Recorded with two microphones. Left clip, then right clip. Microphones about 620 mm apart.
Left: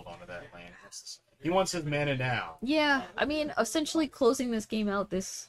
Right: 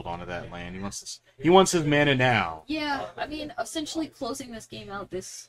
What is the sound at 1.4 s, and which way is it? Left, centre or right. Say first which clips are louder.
Speech: right 9 dB; right.